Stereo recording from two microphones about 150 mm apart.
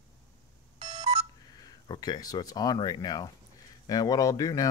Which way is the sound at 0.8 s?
45° right (ahead or behind).